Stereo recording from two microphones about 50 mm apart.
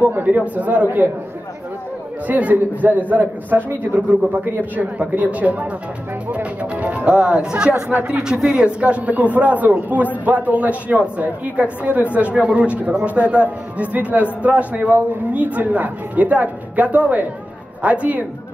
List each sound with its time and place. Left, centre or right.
0.1 s a man's voice: right
2.2 s a man's voice: right
7.9 s a man's voice: right
8.2 s speech: centre